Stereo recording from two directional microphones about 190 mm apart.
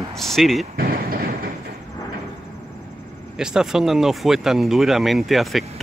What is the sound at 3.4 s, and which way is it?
Speech, 5° right (ahead or behind).